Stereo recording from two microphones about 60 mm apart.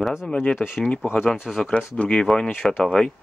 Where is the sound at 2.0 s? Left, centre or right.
Centre.